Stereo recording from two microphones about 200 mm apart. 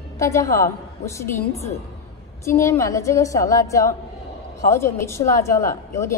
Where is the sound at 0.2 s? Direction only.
15° left (ahead or behind).